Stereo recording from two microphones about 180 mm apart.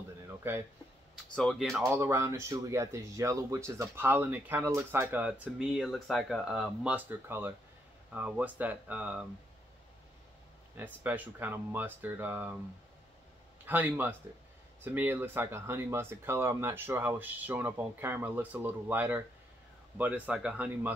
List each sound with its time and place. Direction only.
1.1 s speech: centre (ahead or behind)
1.8 s speech: 15° right (ahead or behind)
10.8 s speech: 10° right (ahead or behind)
13.7 s speech: 10° right (ahead or behind)